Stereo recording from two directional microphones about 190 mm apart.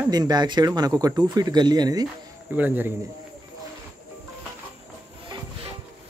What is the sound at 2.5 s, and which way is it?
Speech, 10° right (ahead or behind).